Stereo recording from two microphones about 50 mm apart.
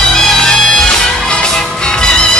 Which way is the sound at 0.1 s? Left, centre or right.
Centre.